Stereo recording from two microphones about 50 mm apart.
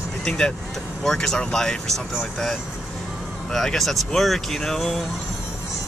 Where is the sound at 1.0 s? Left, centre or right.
Centre.